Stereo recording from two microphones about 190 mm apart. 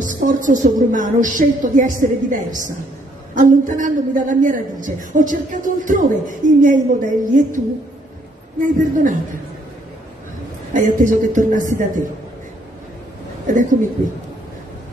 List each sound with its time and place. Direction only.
0.0 s a woman's voice: 45° right (ahead or behind)
10.7 s a woman's voice: 45° right (ahead or behind)